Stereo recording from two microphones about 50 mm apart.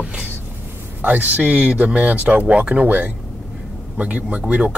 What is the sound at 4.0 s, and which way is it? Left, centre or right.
Speech, right.